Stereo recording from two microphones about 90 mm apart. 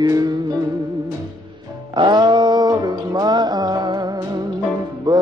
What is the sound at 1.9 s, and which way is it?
Music, 55° right (ahead or behind).